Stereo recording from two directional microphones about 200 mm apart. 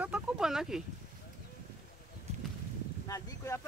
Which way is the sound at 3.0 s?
15° left (ahead or behind).